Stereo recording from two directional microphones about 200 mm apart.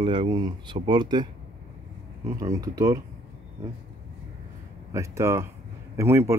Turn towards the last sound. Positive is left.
turn(degrees=-15)  # may be behind; listen again after turning